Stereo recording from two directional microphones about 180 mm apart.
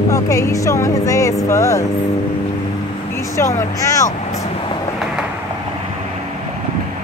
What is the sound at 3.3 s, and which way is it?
Speech, 15° left (ahead or behind).